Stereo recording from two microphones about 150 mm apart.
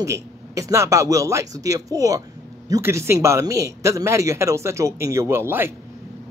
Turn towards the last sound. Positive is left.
turn(degrees=-15)  # may be behind; listen again after turning